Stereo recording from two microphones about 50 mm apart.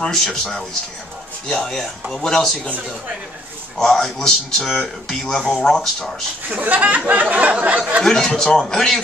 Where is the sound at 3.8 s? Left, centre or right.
Centre.